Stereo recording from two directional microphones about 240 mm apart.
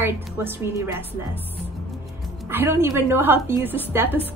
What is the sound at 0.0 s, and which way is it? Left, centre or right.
A woman's voice, centre.